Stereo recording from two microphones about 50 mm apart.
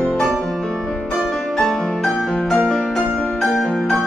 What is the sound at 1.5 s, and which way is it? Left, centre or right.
Music, centre.